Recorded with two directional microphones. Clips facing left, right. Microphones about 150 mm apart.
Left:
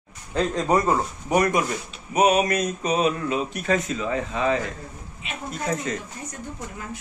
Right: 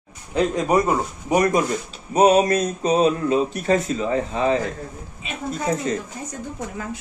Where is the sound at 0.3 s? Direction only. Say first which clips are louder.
Right 2 dB; 15° right (ahead or behind).